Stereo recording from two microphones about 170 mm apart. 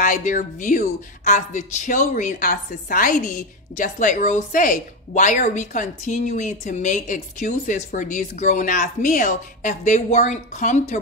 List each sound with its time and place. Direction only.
0.0 s a woman's voice: 50° left (ahead or behind)